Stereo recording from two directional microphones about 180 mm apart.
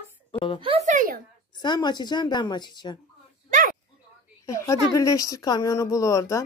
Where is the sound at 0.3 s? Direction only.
30° left (ahead or behind).